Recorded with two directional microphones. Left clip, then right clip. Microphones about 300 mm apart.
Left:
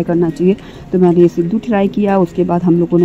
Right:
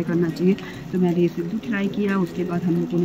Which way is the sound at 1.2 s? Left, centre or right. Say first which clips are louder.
Left 11 dB; centre.